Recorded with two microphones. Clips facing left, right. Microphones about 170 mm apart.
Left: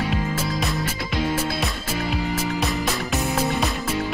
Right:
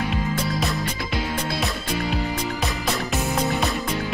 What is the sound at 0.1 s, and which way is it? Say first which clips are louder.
Music: even; centre (ahead or behind).